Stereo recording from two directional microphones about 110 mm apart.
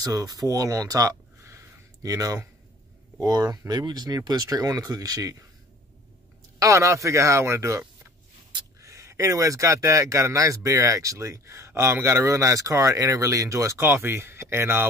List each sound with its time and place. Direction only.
0.0 s speech: 35° right (ahead or behind)
6.6 s speech: 25° right (ahead or behind)
8.8 s speech: 30° right (ahead or behind)